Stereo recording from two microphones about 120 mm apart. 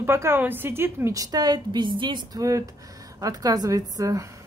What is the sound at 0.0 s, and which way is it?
A woman's voice, 20° right (ahead or behind).